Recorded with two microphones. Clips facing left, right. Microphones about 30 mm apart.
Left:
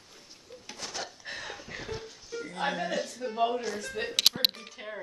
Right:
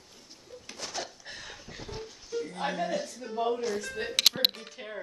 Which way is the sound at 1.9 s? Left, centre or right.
Centre.